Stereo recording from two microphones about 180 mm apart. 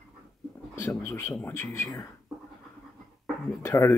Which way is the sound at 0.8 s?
15° left (ahead or behind).